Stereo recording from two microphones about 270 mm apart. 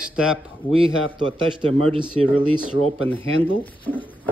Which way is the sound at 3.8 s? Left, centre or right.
Centre.